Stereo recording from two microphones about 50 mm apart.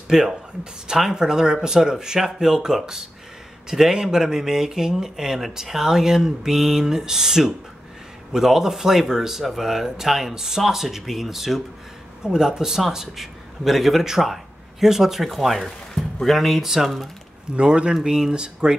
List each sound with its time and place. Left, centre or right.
0.1 s speech: centre
17.5 s speech: centre